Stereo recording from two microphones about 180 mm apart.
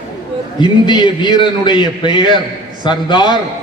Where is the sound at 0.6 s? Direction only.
25° left (ahead or behind).